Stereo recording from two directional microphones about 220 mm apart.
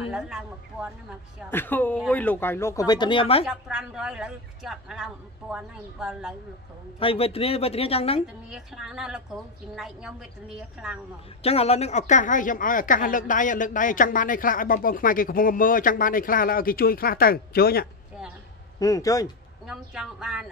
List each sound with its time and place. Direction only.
0.1 s a woman's voice: centre (ahead or behind)
1.5 s speech: 10° left (ahead or behind); by 3.4 s 25° left (ahead or behind)
3.4 s a woman's voice: 5° right (ahead or behind)
7.0 s speech: 25° left (ahead or behind)
8.5 s a woman's voice: centre (ahead or behind)
11.4 s speech: 25° left (ahead or behind); by 17.8 s 45° left (ahead or behind)
18.8 s speech: 15° left (ahead or behind)
19.6 s a woman's voice: 5° right (ahead or behind)